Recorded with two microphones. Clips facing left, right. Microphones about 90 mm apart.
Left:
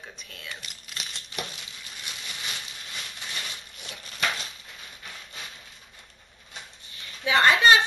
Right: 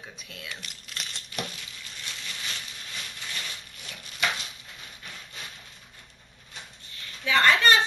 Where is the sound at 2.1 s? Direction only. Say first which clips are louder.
Even; 15° left (ahead or behind).